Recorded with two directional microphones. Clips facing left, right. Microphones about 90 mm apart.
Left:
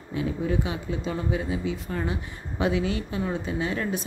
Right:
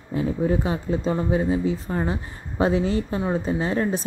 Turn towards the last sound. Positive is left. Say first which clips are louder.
# right 4 dB
turn(degrees=-35)  # may be behind; listen again after turning